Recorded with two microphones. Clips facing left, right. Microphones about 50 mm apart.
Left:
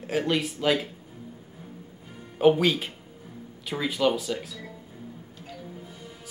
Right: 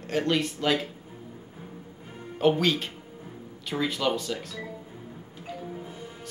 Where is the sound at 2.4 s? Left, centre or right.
Centre.